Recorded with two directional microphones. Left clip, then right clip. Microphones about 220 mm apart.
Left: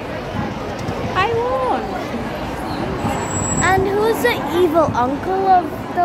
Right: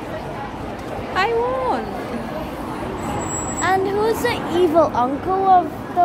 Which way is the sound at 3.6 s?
10° right (ahead or behind).